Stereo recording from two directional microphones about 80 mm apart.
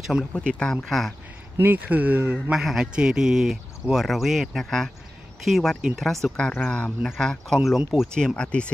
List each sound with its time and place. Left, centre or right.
0.3 s speech: centre
1.6 s speech: right
2.5 s a man's voice: centre
6.3 s speech: centre
7.2 s speech: centre
7.6 s a man's voice: centre
8.1 s speech: centre